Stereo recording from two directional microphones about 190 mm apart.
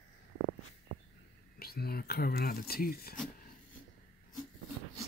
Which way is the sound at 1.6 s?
55° left (ahead or behind).